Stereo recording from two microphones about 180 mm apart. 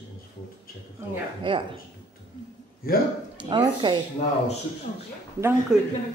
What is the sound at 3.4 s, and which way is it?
Speech, 25° right (ahead or behind).